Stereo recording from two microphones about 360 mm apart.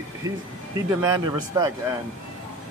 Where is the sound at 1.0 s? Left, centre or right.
Centre.